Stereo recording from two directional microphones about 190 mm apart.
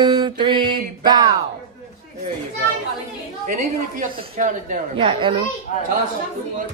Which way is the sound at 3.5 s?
45° right (ahead or behind).